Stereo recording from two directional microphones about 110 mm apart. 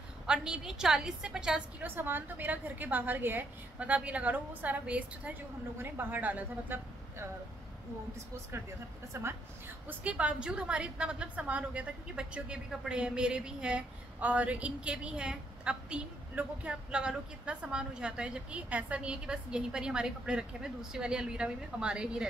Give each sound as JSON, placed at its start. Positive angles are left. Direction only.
{"t": 0.3, "sound": "a woman's voice", "side_deg": -5}
{"t": 1.9, "sound": "a woman's voice", "side_deg": -20}
{"t": 9.1, "sound": "a woman's voice", "side_deg": -25}
{"t": 9.8, "sound": "a woman's voice", "side_deg": -10}